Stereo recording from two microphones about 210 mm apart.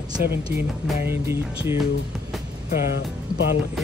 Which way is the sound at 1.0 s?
10° right (ahead or behind).